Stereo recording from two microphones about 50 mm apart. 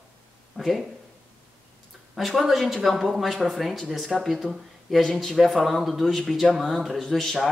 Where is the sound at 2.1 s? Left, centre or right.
Centre.